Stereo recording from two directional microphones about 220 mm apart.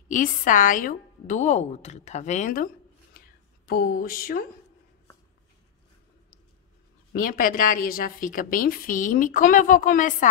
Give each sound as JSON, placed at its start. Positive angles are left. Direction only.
{"t": 0.1, "sound": "a woman's voice", "side_deg": 35}
{"t": 7.2, "sound": "a woman's voice", "side_deg": 40}